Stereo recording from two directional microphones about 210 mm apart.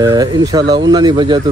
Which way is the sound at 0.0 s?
15° right (ahead or behind).